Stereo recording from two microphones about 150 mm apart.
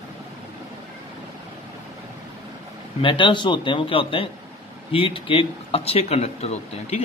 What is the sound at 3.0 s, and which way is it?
A man's voice, 35° left (ahead or behind).